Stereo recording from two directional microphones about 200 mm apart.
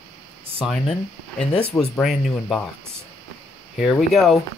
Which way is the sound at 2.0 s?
Centre (ahead or behind).